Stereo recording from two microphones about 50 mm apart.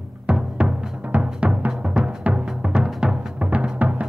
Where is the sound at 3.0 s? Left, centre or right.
Centre.